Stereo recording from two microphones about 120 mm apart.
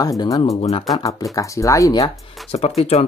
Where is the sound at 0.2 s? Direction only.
30° left (ahead or behind).